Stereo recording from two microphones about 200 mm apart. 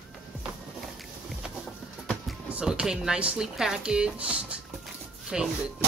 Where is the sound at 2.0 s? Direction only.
Centre (ahead or behind).